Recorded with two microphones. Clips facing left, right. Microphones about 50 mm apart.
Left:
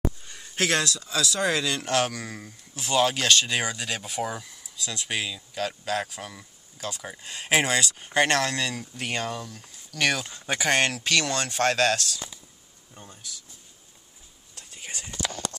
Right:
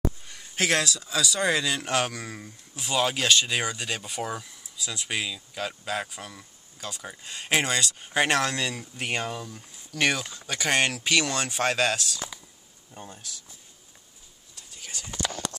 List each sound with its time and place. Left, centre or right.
0.3 s speech: centre
10.3 s speech: left
10.7 s speech: centre
12.9 s speech: centre
14.7 s whispering: left